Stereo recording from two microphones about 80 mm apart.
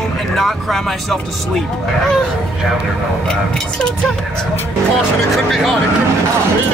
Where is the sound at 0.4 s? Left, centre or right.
Centre.